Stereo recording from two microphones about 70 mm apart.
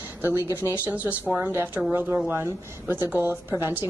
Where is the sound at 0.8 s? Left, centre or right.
Right.